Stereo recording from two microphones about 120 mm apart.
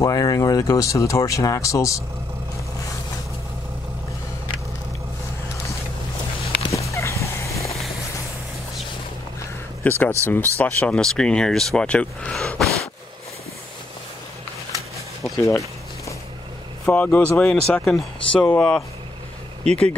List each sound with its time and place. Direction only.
0.0 s speech: 30° left (ahead or behind)
6.7 s fowl: 25° left (ahead or behind)
9.8 s speech: 15° left (ahead or behind)
15.3 s speech: 25° left (ahead or behind)
16.8 s speech: 10° left (ahead or behind)